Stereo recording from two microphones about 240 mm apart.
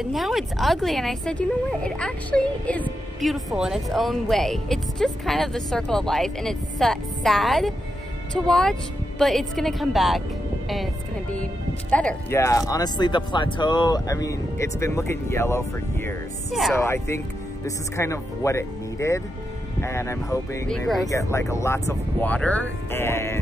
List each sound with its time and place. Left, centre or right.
0.0 s a woman's voice: centre
11.9 s speech: centre
16.7 s speech: centre
20.7 s a woman's voice: centre
21.1 s speech: centre